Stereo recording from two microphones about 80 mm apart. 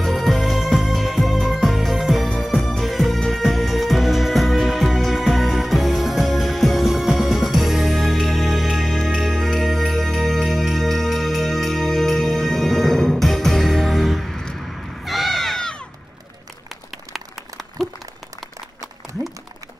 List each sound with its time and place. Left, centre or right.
0.0 s music: centre
2.2 s music: centre
17.1 s a sound: centre